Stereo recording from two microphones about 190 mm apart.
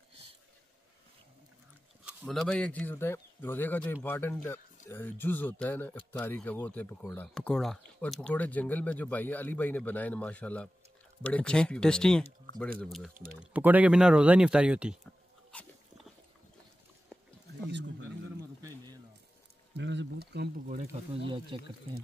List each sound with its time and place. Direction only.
2.0 s speech: centre (ahead or behind)
13.1 s speech: 45° right (ahead or behind)
13.4 s speech: 10° right (ahead or behind)
17.6 s a sound: 70° right (ahead or behind)
19.8 s speech: 70° right (ahead or behind); by 20.8 s 45° right (ahead or behind)
21.1 s speech: 25° right (ahead or behind)